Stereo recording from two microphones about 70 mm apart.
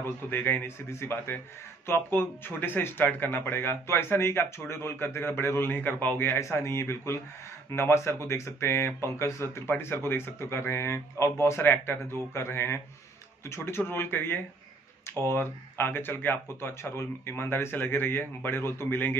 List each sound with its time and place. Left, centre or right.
0.3 s speech: left
6.4 s speech: left